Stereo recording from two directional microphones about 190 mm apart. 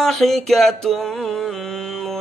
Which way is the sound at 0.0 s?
Centre (ahead or behind).